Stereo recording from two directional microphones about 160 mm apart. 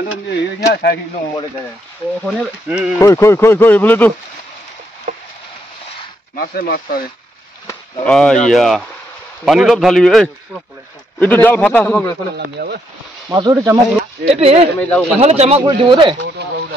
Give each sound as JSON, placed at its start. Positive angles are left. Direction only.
{"t": 0.3, "sound": "speech", "side_deg": 90}
{"t": 2.2, "sound": "a man's voice", "side_deg": -5}
{"t": 3.0, "sound": "speech", "side_deg": 15}
{"t": 5.1, "sound": "a sound", "side_deg": -50}
{"t": 6.3, "sound": "speech", "side_deg": 70}
{"t": 8.0, "sound": "a man's voice", "side_deg": 5}
{"t": 11.1, "sound": "speech", "side_deg": 10}
{"t": 12.5, "sound": "speech", "side_deg": -90}
{"t": 13.3, "sound": "speech", "side_deg": -25}
{"t": 14.3, "sound": "speech", "side_deg": -40}
{"t": 14.8, "sound": "speech", "side_deg": 5}
{"t": 15.1, "sound": "speech", "side_deg": -40}
{"t": 15.6, "sound": "speech", "side_deg": -30}
{"t": 16.4, "sound": "speech", "side_deg": -90}